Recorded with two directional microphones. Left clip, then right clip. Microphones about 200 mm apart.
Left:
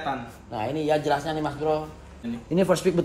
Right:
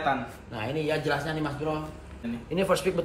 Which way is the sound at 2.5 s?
55° left (ahead or behind).